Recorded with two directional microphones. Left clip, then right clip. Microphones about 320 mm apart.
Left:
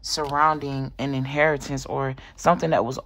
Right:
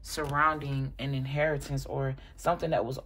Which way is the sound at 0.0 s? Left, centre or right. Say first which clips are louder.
Left 6 dB; centre.